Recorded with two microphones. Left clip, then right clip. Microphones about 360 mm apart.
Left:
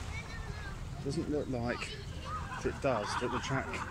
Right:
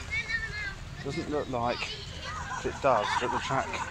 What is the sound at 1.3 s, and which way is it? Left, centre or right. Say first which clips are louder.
Speech: right 9 dB; right.